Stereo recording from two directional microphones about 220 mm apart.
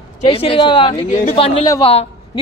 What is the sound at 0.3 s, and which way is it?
A woman's voice, 25° left (ahead or behind).